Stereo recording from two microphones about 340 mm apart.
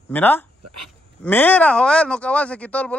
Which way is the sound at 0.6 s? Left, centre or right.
Right.